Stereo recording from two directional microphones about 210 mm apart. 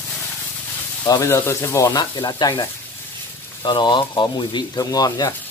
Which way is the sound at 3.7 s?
20° left (ahead or behind).